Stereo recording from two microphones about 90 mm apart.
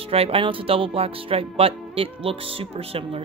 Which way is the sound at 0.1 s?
90° right.